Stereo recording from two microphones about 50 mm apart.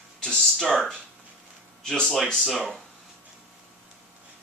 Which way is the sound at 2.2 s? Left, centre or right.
Centre.